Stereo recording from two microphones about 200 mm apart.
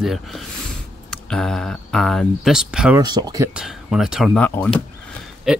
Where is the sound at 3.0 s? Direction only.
20° right (ahead or behind).